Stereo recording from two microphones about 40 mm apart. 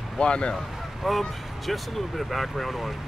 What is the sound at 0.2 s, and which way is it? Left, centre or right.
Speech, left.